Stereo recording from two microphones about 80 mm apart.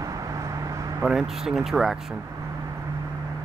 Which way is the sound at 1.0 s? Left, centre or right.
Centre.